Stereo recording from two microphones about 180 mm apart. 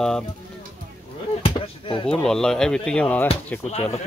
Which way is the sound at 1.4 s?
30° left (ahead or behind).